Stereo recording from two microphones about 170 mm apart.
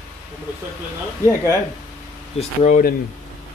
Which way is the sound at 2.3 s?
45° left (ahead or behind).